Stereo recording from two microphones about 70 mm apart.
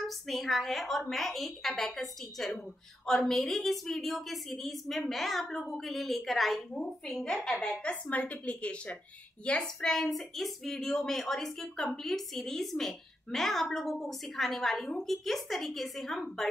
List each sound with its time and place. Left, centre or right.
0.0 s a woman's voice: centre
7.8 s a woman's voice: left; by 16.4 s centre